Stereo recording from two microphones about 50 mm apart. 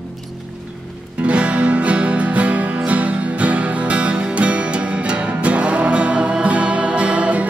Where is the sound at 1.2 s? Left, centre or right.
Right.